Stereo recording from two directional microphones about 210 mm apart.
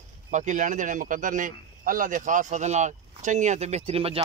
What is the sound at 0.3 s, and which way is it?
Speech, 35° right (ahead or behind).